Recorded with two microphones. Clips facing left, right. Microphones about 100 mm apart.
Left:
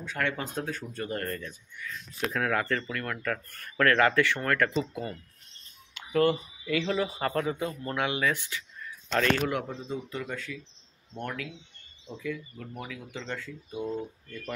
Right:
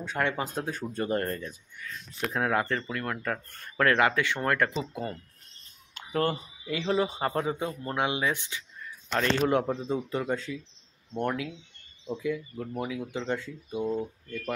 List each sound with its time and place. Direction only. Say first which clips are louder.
0.0 s speech: right 2 dB; 25° right (ahead or behind)
0.9 s speech: right 6 dB; 30° right (ahead or behind)
4.7 s speech: left 2 dB; 30° right (ahead or behind)
5.9 s a sound: left 4 dB; 40° right (ahead or behind)
6.6 s speech: right 2 dB; 25° right (ahead or behind)
9.4 s speech: right 5 dB; 30° right (ahead or behind)
11.1 s speech: right 6 dB; 20° right (ahead or behind)